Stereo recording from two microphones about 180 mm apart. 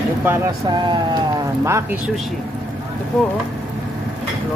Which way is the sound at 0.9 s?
20° right (ahead or behind).